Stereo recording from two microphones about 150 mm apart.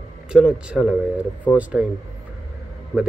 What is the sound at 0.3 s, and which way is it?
A man's voice, 5° right (ahead or behind).